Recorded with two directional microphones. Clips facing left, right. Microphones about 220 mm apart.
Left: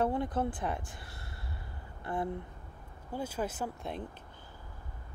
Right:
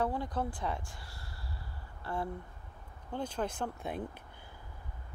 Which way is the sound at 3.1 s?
5° left (ahead or behind).